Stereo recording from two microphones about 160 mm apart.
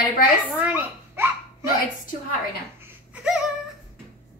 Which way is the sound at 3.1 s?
5° right (ahead or behind).